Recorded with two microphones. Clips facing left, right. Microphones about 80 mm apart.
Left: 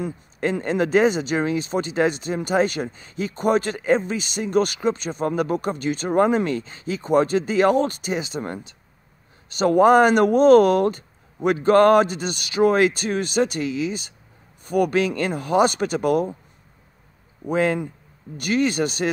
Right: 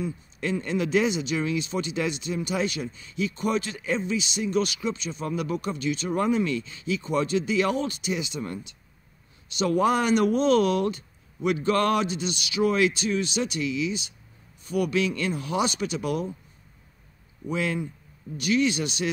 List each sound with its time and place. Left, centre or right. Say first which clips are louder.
0.4 s speech: left 5 dB; left
17.5 s speech: left 7 dB; left